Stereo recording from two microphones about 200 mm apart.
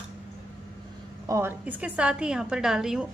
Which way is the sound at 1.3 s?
10° right (ahead or behind).